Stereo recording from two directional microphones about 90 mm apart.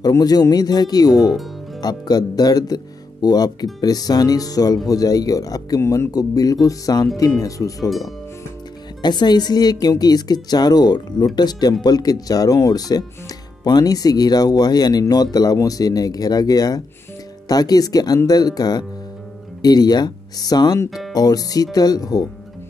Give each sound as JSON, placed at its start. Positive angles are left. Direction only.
{"t": 0.1, "sound": "speech", "side_deg": 45}
{"t": 1.3, "sound": "music", "side_deg": 0}
{"t": 1.8, "sound": "speech", "side_deg": 50}
{"t": 9.0, "sound": "speech", "side_deg": 55}